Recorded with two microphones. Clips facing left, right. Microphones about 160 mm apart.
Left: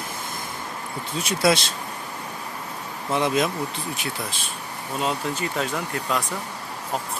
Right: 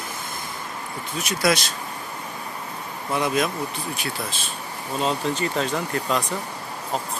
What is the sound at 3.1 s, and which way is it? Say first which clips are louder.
Speech: left 1 dB; 25° left (ahead or behind).